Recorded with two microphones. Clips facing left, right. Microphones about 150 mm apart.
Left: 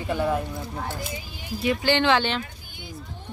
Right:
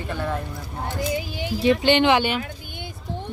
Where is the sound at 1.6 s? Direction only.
20° right (ahead or behind).